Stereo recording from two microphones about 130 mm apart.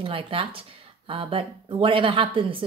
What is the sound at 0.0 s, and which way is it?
A woman's voice, 45° right (ahead or behind).